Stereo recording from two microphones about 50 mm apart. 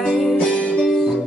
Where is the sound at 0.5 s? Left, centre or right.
Left.